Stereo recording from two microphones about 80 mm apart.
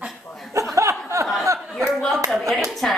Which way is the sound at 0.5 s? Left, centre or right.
Right.